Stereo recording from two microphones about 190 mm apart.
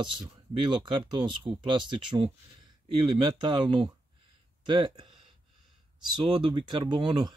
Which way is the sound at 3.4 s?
25° right (ahead or behind).